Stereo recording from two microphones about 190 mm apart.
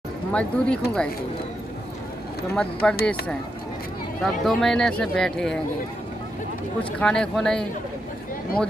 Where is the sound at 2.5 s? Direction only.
5° left (ahead or behind).